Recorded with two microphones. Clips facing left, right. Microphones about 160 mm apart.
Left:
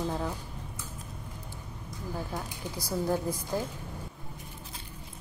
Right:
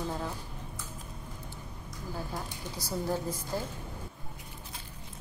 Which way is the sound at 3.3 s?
10° left (ahead or behind).